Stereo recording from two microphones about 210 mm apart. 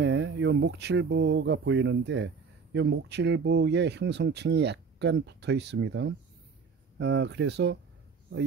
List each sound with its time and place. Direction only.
0.0 s speech: 60° right (ahead or behind)